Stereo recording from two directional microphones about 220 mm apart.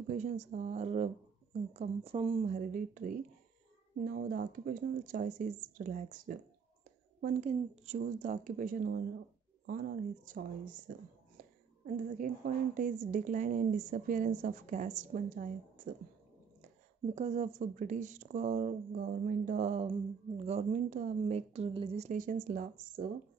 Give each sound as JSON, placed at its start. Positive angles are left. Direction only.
{"t": 0.0, "sound": "speech", "side_deg": -35}
{"t": 17.1, "sound": "speech", "side_deg": -30}